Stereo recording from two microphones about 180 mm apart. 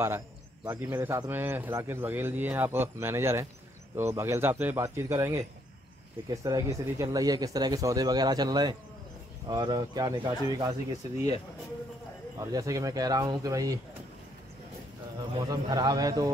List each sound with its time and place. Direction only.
0.7 s speech: 15° right (ahead or behind)
12.4 s speech: 20° right (ahead or behind)
15.3 s speech: 20° right (ahead or behind)